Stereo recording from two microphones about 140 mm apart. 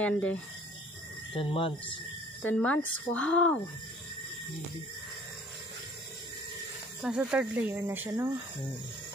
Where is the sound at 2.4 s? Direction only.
10° left (ahead or behind).